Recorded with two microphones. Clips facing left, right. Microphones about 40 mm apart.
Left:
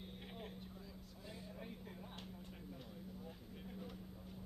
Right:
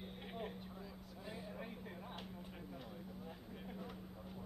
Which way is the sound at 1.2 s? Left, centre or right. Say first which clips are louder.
Right 4 dB; right.